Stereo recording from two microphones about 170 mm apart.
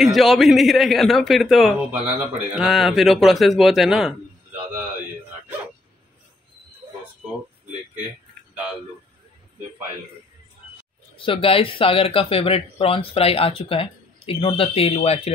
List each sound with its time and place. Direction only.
0.0 s a man's voice: centre (ahead or behind)
11.1 s speech: 30° left (ahead or behind)